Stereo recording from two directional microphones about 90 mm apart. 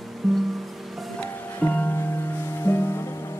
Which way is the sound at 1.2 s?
20° left (ahead or behind).